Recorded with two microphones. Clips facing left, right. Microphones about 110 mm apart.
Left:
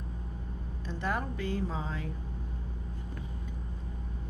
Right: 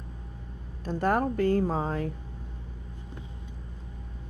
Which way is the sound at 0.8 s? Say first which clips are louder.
Right 8 dB; 45° right (ahead or behind).